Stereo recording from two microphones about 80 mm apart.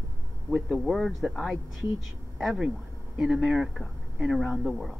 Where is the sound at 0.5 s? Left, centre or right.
Centre.